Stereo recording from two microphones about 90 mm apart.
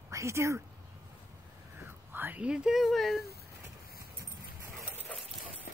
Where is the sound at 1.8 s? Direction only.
25° right (ahead or behind); by 3.2 s centre (ahead or behind).